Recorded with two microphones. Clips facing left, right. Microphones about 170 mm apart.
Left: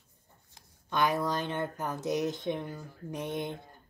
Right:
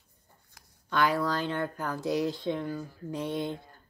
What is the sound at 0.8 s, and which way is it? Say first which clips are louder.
Speech: right 2 dB; 20° left (ahead or behind).